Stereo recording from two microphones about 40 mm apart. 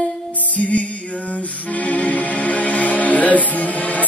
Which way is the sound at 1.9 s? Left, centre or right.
Left.